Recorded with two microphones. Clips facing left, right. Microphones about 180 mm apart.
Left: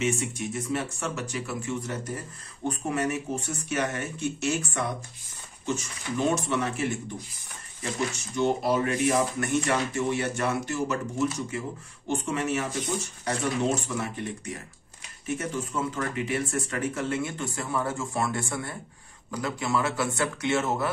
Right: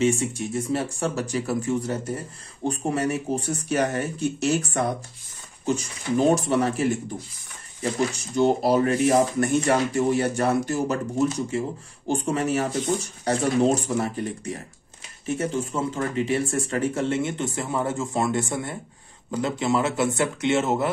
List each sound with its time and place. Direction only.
0.0 s speech: 30° right (ahead or behind)